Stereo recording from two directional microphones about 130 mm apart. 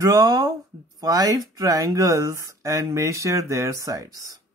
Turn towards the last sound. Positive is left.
turn(degrees=-25)  # may be behind; listen again after turning